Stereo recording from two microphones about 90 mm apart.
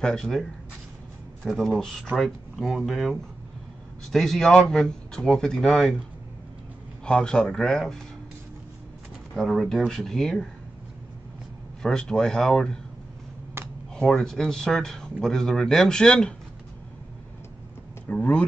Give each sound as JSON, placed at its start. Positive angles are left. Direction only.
{"t": 0.0, "sound": "speech", "side_deg": 5}
{"t": 7.1, "sound": "speech", "side_deg": 10}
{"t": 9.3, "sound": "speech", "side_deg": 0}
{"t": 11.8, "sound": "speech", "side_deg": 5}
{"t": 13.6, "sound": "a sound", "side_deg": -25}
{"t": 13.9, "sound": "speech", "side_deg": 5}
{"t": 18.0, "sound": "speech", "side_deg": 15}